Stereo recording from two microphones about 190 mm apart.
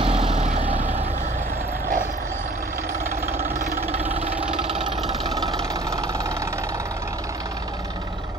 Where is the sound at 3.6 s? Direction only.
35° right (ahead or behind).